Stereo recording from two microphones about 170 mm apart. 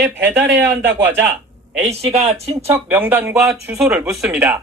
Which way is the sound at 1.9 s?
40° right (ahead or behind).